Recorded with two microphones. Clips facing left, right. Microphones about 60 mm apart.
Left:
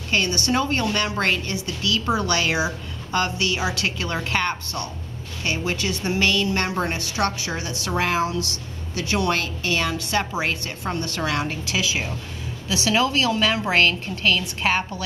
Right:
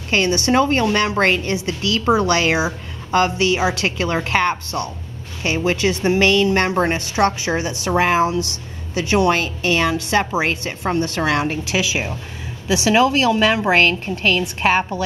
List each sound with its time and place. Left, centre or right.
0.1 s a woman's voice: right
6.1 s a woman's voice: right